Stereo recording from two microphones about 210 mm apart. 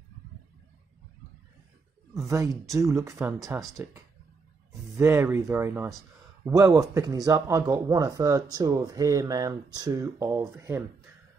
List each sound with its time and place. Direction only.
2.2 s speech: 15° right (ahead or behind)